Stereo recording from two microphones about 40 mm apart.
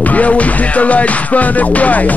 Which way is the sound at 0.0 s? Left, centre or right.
Left.